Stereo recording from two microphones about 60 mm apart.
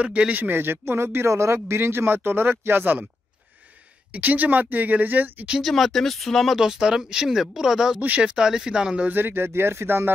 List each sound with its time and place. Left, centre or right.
0.0 s speech: right
4.1 s speech: right
5.6 s speech: centre
6.6 s speech: centre
8.0 s speech: right
9.0 s speech: right